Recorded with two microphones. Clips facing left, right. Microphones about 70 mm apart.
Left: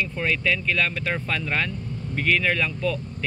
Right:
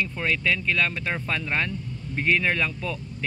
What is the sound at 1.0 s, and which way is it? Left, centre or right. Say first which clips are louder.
Speech: left 1 dB; centre.